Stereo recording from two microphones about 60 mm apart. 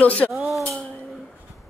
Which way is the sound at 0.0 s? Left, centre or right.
Left.